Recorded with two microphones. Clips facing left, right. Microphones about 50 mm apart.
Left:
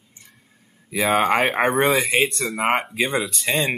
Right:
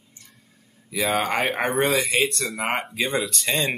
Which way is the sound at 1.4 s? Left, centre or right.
Centre.